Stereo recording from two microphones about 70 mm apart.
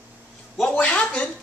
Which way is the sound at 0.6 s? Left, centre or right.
Centre.